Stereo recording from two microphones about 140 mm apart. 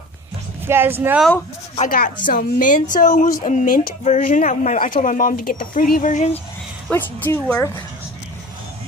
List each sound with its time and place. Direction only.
0.7 s speech: 15° right (ahead or behind)
1.9 s a woman's voice: 90° left
2.2 s speech: 70° left (ahead or behind); by 3.9 s 90° left
4.0 s speech: 60° left (ahead or behind)
6.9 s a woman's voice: 15° left (ahead or behind)